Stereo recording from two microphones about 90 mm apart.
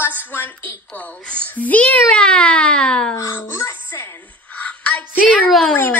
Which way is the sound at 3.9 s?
25° left (ahead or behind).